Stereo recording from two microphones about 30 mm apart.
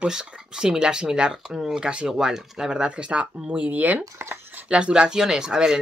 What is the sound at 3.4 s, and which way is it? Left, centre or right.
Speech, right.